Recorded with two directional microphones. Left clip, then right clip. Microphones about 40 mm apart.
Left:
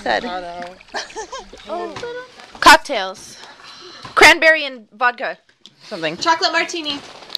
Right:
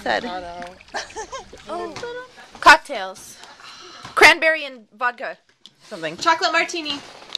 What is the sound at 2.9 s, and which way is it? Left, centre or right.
Speech, left.